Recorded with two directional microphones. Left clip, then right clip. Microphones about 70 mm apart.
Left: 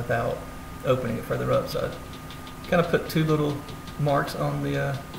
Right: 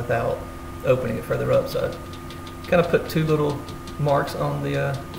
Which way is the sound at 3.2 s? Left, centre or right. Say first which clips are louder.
Right 3 dB; right.